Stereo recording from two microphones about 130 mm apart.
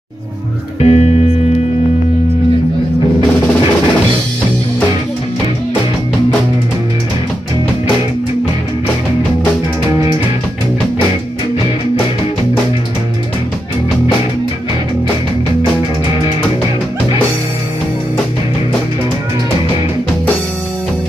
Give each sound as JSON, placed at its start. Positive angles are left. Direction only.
{"t": 0.7, "sound": "music", "side_deg": 55}